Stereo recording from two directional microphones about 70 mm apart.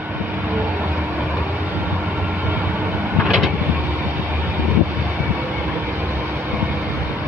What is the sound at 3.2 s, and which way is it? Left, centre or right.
Vehicle, centre.